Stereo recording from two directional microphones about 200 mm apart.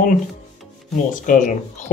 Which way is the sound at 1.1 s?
40° left (ahead or behind).